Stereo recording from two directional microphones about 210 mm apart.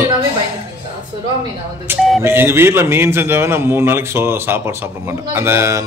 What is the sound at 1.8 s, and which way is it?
A man's voice, 5° right (ahead or behind).